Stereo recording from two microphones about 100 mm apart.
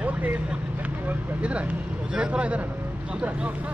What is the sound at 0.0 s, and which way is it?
Speech, 15° right (ahead or behind).